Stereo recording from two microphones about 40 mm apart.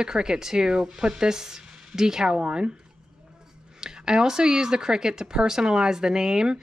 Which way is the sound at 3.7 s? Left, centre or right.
Centre.